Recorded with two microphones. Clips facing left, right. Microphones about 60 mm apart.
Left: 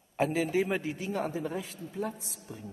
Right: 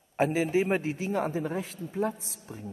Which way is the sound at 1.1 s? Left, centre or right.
Right.